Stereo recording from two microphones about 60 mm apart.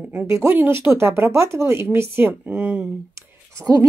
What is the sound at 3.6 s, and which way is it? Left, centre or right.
Speech, right.